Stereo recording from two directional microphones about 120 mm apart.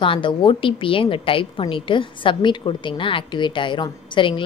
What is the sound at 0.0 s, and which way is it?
A woman's voice, 45° left (ahead or behind).